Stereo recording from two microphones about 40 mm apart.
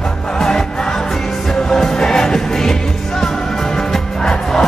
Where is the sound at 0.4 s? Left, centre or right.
Centre.